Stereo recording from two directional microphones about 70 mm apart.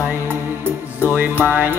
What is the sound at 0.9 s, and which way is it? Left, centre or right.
Speech, right.